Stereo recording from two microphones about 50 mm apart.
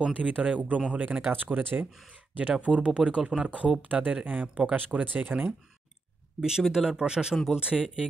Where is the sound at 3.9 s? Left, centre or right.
Right.